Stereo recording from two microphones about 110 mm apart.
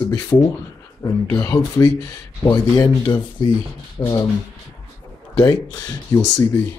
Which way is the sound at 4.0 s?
35° left (ahead or behind).